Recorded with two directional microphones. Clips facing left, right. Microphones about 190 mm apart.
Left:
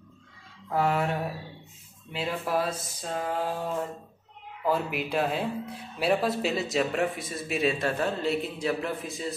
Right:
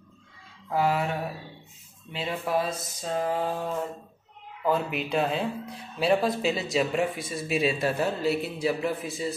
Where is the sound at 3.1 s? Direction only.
Centre (ahead or behind).